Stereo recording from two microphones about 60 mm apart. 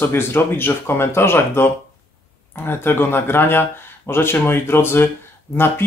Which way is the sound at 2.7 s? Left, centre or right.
Left.